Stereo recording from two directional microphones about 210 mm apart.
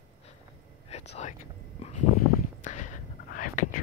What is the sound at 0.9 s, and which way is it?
Whispering, 30° left (ahead or behind).